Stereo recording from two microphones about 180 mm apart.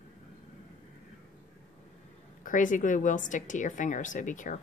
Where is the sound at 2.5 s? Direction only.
45° left (ahead or behind).